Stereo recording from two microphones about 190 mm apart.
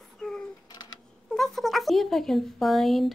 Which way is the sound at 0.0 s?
Centre (ahead or behind).